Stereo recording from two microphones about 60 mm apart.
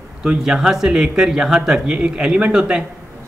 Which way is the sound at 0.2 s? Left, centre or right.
Centre.